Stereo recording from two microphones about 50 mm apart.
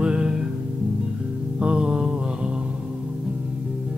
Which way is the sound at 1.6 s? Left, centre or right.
Right.